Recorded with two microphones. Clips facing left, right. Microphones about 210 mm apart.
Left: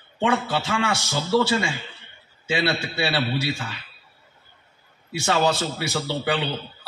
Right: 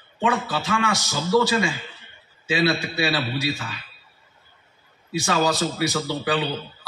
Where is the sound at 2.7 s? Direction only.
25° left (ahead or behind).